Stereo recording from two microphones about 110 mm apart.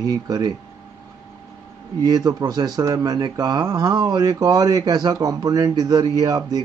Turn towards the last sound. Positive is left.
turn(degrees=-35)  # may be behind; listen again after turning